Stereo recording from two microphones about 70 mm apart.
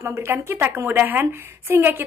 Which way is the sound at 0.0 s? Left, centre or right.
Right.